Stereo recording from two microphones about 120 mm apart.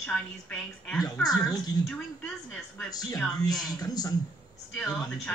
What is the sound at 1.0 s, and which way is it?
Speech, 35° left (ahead or behind).